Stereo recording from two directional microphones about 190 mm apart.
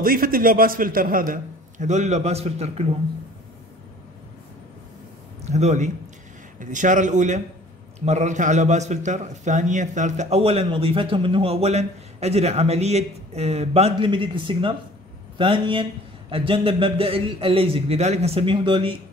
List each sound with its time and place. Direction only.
0.0 s a man's voice: 50° right (ahead or behind); by 2.9 s 35° right (ahead or behind)
5.4 s a man's voice: 35° right (ahead or behind)